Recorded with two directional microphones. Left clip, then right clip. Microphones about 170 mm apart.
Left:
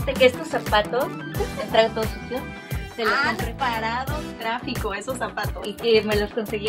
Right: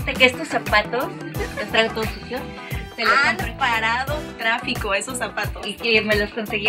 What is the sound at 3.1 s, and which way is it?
Speech, 5° right (ahead or behind).